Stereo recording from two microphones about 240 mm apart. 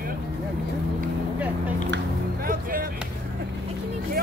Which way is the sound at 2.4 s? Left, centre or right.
Right.